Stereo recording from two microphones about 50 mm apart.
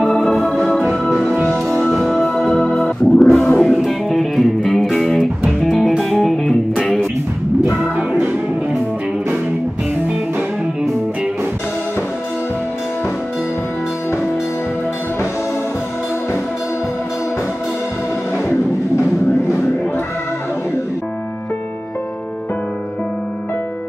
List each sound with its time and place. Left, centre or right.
0.1 s organ: centre
1.5 s music: centre
6.7 s music: left